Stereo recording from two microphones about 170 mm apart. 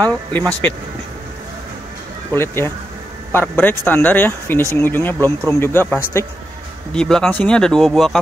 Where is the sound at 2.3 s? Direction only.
15° left (ahead or behind).